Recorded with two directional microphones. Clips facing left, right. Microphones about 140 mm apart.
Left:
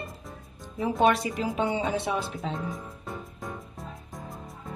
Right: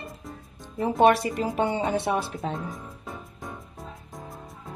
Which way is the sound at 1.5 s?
55° right (ahead or behind).